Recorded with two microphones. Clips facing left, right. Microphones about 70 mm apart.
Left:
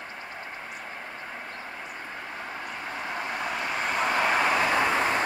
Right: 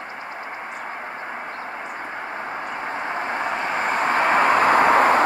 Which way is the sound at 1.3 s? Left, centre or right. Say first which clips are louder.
Right 7 dB; right.